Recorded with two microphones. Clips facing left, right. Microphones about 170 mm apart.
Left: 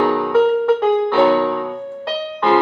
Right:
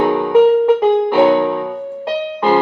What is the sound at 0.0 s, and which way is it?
Music, 20° right (ahead or behind).